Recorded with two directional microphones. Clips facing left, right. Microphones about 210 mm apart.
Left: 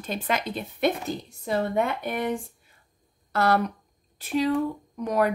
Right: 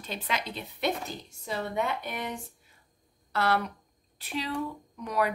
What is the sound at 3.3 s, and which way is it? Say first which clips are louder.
A woman's voice: left 5 dB; 45° left (ahead or behind).